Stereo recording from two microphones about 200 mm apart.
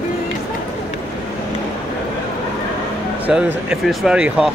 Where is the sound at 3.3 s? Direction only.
5° right (ahead or behind).